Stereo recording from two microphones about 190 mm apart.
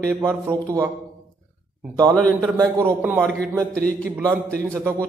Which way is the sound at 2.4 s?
10° right (ahead or behind).